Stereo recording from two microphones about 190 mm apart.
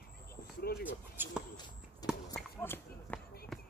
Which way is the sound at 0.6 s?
55° left (ahead or behind).